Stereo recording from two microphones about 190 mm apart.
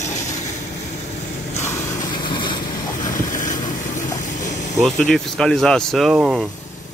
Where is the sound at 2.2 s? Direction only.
25° left (ahead or behind).